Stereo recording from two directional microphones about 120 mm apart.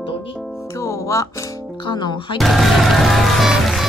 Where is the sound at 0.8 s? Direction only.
25° left (ahead or behind).